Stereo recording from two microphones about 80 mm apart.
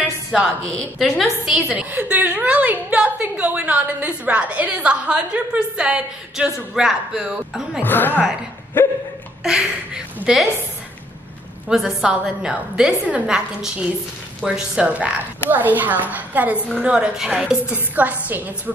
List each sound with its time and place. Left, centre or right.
0.9 s a woman's voice: centre
1.5 s a woman's voice: centre
7.8 s a woman's voice: left
9.4 s a woman's voice: centre
11.7 s a woman's voice: centre
16.5 s a woman's voice: centre
16.8 s a woman's voice: centre